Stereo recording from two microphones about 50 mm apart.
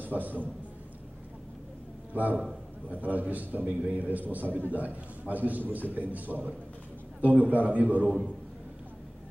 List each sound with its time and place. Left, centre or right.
0.0 s a man's voice: right
2.1 s a man's voice: right